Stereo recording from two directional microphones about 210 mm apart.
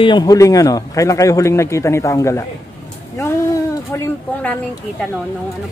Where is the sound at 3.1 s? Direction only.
10° left (ahead or behind).